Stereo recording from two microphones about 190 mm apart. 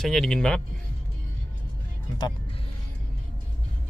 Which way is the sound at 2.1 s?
20° left (ahead or behind).